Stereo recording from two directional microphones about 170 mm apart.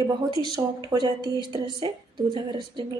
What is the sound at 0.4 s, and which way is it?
Speech, 25° right (ahead or behind).